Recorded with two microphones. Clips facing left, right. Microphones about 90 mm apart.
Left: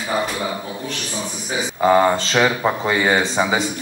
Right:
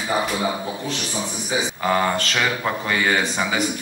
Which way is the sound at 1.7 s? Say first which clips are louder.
Left 8 dB; 20° left (ahead or behind).